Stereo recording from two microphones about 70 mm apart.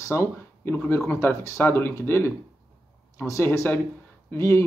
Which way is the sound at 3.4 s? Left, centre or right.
Left.